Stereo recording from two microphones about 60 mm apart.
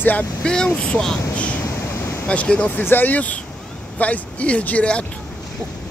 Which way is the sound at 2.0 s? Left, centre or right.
Left.